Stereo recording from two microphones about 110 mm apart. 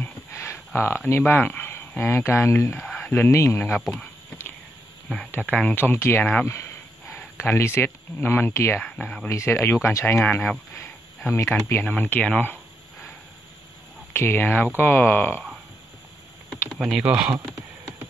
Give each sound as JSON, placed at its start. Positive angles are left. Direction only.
{"t": 0.0, "sound": "a sound", "side_deg": 25}
{"t": 3.3, "sound": "speech", "side_deg": 25}
{"t": 5.5, "sound": "speech", "side_deg": 10}
{"t": 9.3, "sound": "speech", "side_deg": 25}
{"t": 14.1, "sound": "speech", "side_deg": 20}
{"t": 16.4, "sound": "speech", "side_deg": -5}